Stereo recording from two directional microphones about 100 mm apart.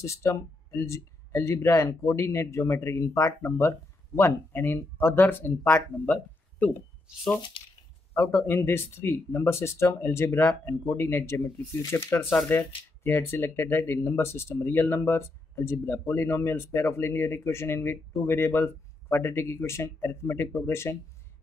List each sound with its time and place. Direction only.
0.0 s speech: 30° left (ahead or behind)
7.1 s speech: 10° right (ahead or behind)
8.1 s a man's voice: 25° left (ahead or behind)